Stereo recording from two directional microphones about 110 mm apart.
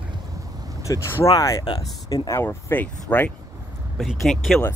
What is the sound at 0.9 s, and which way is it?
Speech, 35° left (ahead or behind).